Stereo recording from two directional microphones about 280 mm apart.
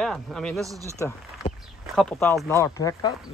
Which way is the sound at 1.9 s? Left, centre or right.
Centre.